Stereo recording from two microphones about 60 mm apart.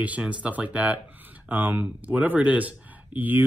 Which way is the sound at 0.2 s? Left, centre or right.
Right.